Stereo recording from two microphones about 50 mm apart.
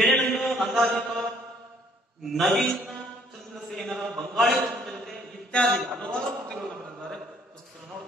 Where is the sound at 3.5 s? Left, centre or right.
Centre.